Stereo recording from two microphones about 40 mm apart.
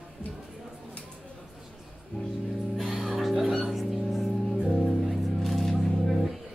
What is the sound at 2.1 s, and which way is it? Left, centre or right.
Speech, left.